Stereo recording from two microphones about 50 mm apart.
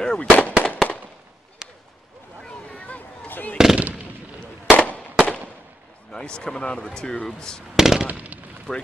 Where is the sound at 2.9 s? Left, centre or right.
Left.